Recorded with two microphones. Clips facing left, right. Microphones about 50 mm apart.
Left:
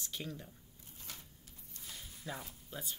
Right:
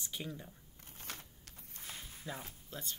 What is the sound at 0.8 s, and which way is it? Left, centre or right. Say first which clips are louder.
Typewriter: right 4 dB; right.